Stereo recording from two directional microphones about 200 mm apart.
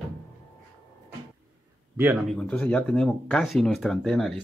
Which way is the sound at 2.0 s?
10° right (ahead or behind).